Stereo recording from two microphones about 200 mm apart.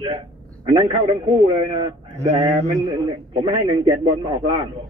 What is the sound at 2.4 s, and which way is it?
Mantra, 30° right (ahead or behind).